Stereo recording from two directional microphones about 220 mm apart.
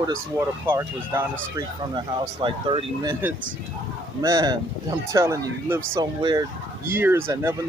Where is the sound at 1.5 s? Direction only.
20° right (ahead or behind).